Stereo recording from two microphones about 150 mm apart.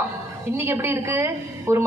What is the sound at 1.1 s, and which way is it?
Speech, 20° right (ahead or behind).